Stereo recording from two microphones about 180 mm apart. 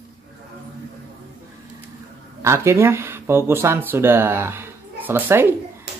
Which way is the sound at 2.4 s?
15° right (ahead or behind).